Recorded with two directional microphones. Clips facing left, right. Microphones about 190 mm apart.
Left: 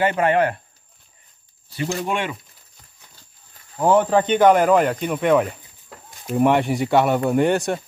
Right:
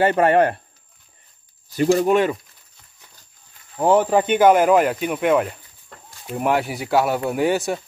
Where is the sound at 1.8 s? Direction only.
40° right (ahead or behind).